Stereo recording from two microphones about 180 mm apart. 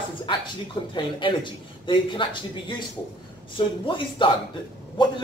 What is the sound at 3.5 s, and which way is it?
Speech, 30° left (ahead or behind).